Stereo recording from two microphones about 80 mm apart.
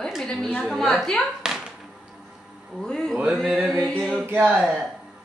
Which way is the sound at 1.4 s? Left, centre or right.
Centre.